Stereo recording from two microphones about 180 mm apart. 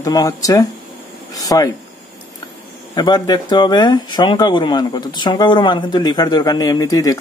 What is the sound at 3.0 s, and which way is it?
Speech, 25° left (ahead or behind).